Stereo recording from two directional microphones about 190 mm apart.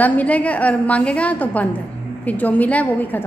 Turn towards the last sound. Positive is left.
turn(degrees=10)  # may be behind; listen again after turning